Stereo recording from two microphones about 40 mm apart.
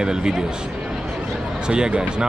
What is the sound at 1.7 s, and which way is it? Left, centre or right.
Speech, right.